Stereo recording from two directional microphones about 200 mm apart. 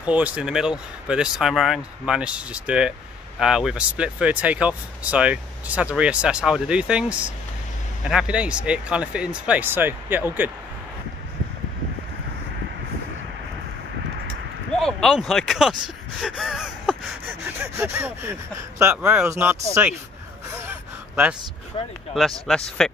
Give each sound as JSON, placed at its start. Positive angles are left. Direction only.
{"t": 0.0, "sound": "speech", "side_deg": -5}
{"t": 14.8, "sound": "speech", "side_deg": 0}
{"t": 21.7, "sound": "speech", "side_deg": 25}
{"t": 22.1, "sound": "speech", "side_deg": 0}